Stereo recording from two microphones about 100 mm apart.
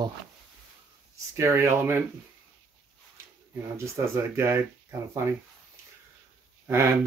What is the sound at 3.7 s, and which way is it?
Speech, 30° right (ahead or behind).